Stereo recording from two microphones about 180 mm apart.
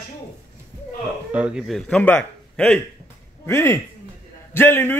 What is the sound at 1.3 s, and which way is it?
A man's voice, 5° right (ahead or behind).